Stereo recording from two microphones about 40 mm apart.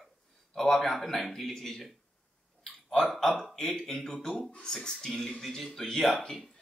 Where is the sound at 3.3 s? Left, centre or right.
Centre.